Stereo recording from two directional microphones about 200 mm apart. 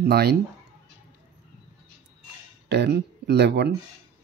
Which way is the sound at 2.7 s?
55° right (ahead or behind).